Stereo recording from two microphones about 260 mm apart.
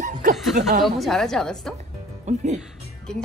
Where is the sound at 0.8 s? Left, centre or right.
Centre.